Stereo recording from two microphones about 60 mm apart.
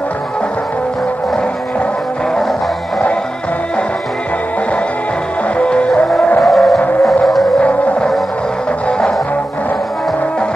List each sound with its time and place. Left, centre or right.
5.6 s music: centre
6.4 s music: centre
7.6 s music: left